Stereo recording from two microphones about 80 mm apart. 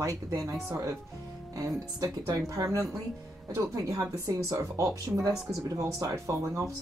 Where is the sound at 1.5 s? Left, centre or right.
Right.